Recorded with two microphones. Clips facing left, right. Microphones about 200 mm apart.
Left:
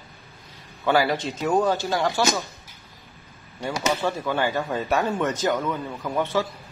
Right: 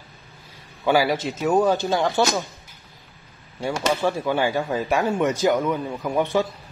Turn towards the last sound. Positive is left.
turn(degrees=-15)  # may be behind; listen again after turning